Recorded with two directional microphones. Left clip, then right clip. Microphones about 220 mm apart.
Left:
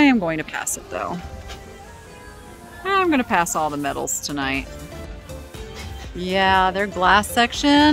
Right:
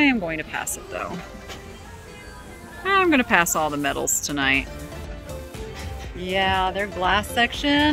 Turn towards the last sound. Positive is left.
turn(degrees=25)  # may be behind; listen again after turning